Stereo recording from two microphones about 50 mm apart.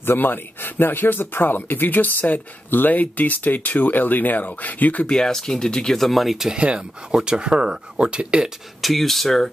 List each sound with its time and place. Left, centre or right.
0.0 s speech: left
5.0 s speech: centre
6.0 s speech: centre
6.3 s speech: centre
6.6 s speech: right
8.8 s speech: centre